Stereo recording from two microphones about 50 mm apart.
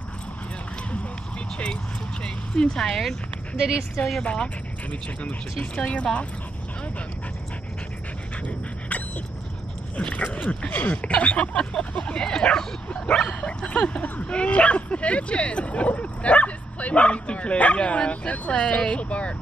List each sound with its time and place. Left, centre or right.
2.2 s speech: centre
4.2 s speech: left
5.6 s speech: left
8.5 s dog: left
9.9 s speech: left